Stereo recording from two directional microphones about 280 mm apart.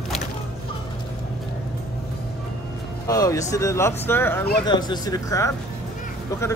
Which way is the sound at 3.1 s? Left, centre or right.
Centre.